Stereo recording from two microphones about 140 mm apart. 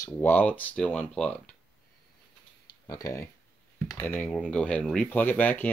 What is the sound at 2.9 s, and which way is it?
Speech, 25° left (ahead or behind).